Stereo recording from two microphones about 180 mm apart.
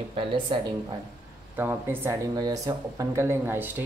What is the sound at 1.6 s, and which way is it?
Speech, 10° right (ahead or behind).